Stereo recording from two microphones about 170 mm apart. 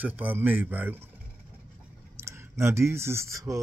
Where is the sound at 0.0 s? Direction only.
10° right (ahead or behind).